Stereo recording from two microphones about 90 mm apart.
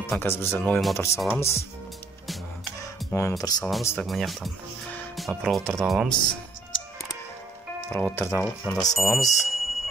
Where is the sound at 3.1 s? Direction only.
35° left (ahead or behind).